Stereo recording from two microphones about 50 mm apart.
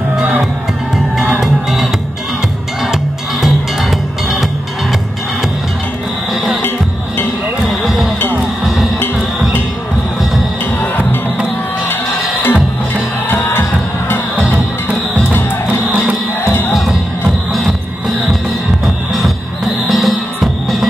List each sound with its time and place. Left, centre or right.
1.4 s music: centre
6.3 s music: centre
7.6 s music: centre
10.8 s music: left
14.9 s music: right
17.5 s music: centre
19.9 s music: centre